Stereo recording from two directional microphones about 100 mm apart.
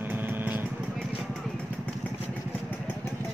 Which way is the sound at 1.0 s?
10° left (ahead or behind).